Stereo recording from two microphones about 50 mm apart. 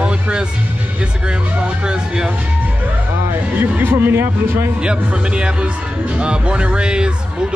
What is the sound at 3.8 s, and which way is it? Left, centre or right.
Speech, right.